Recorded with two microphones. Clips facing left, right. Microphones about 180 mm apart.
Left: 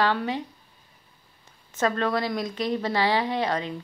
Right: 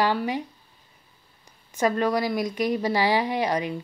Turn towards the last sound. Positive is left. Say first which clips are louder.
# right 2 dB
turn(degrees=-15)  # may be behind; listen again after turning